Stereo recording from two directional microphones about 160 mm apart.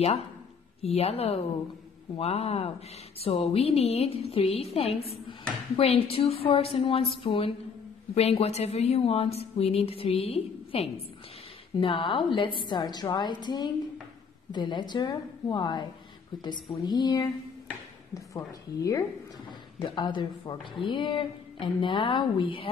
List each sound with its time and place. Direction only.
0.8 s a woman's voice: 40° left (ahead or behind)